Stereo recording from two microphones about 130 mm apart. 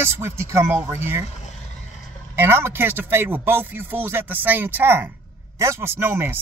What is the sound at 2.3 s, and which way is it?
Speech, 15° right (ahead or behind).